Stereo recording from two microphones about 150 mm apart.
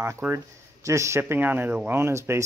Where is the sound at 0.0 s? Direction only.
15° right (ahead or behind).